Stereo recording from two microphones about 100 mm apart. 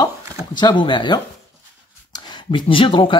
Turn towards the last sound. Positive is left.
turn(degrees=60)  # may be behind; listen again after turning